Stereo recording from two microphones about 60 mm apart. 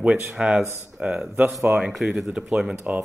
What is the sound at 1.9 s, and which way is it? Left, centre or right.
Speech, centre.